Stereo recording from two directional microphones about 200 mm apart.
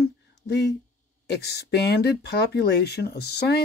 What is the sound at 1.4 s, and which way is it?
Speech, 55° left (ahead or behind).